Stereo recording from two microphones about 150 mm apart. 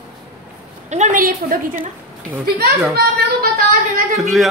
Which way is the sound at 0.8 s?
50° right (ahead or behind).